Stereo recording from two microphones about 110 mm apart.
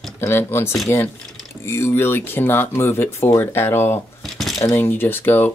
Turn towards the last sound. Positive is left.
turn(degrees=20)  # may be behind; listen again after turning